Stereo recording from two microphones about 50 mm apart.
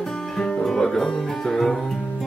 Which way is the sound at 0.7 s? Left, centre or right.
Centre.